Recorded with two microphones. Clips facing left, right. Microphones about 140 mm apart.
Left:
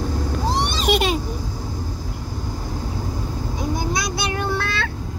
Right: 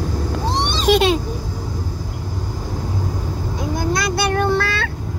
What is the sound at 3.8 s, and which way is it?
Vehicle, 55° right (ahead or behind).